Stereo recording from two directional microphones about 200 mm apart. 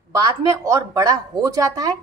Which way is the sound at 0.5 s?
15° right (ahead or behind).